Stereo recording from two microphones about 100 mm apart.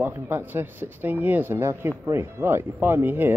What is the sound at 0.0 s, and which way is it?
A man's voice, 20° right (ahead or behind).